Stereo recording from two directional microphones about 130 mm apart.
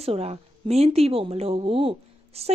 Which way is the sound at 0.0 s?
50° right (ahead or behind).